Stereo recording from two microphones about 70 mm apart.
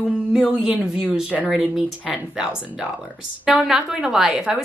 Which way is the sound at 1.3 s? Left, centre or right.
Centre.